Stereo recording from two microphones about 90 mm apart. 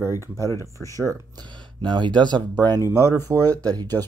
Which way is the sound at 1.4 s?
60° right (ahead or behind).